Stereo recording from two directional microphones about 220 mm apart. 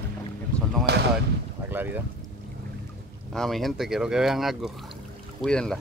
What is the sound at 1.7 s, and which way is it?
Speech, 10° right (ahead or behind).